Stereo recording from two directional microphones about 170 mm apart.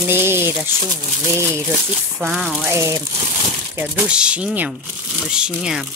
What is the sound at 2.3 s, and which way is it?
Speech, centre (ahead or behind).